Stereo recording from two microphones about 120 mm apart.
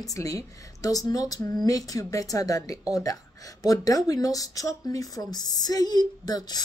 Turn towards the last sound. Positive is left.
turn(degrees=35)  # may be behind; listen again after turning